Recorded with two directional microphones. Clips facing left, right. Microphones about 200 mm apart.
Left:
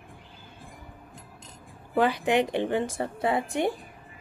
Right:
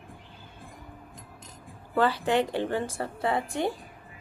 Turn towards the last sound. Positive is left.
turn(degrees=20)  # may be behind; listen again after turning